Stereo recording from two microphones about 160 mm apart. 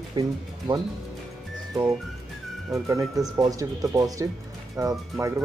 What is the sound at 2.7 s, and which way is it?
Speech, 20° right (ahead or behind).